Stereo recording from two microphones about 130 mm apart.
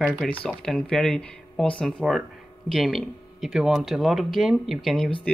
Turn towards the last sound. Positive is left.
turn(degrees=0)  # may be behind; listen again after turning